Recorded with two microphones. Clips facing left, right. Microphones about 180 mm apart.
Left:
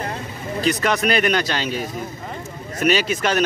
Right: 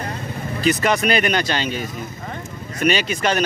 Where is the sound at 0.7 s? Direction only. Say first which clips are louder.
Right 2 dB; centre (ahead or behind).